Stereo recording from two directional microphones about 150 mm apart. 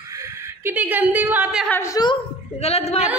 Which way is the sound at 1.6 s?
10° left (ahead or behind).